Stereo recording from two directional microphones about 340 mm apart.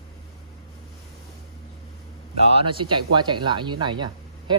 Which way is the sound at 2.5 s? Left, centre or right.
Centre.